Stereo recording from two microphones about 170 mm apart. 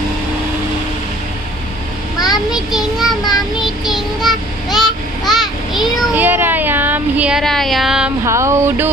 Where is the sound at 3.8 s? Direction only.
Centre (ahead or behind).